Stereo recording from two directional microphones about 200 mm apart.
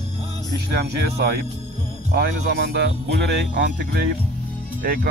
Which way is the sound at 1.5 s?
35° right (ahead or behind).